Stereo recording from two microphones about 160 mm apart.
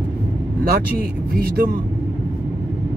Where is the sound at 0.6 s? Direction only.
70° right (ahead or behind).